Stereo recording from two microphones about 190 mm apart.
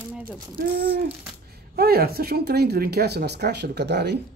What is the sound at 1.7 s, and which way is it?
Speech, 55° right (ahead or behind).